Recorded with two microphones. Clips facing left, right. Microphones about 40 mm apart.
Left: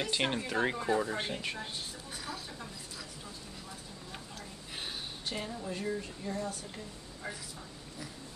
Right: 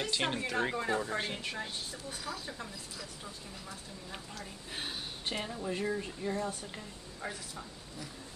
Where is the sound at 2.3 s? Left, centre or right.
Right.